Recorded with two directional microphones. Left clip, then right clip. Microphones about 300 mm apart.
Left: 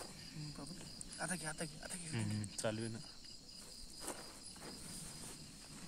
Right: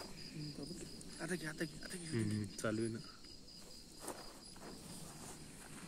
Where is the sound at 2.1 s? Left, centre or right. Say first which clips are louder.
Right 5 dB; centre.